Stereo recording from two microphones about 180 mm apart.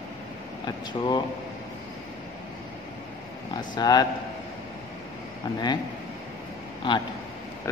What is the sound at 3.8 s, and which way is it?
Speech, 20° left (ahead or behind).